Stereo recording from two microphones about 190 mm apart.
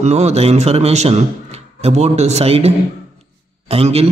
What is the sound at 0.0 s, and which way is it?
A man's voice, 35° right (ahead or behind).